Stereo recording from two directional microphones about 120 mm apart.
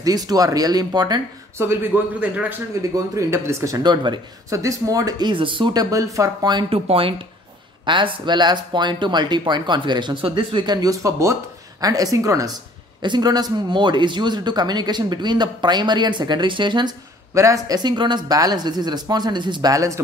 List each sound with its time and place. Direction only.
0.0 s speech: 30° right (ahead or behind)
1.6 s a man's voice: 20° right (ahead or behind); by 4.2 s 35° right (ahead or behind)
4.5 s speech: 25° right (ahead or behind)
5.3 s speech: 45° right (ahead or behind)
6.7 s speech: 50° right (ahead or behind)
17.3 s speech: 25° right (ahead or behind)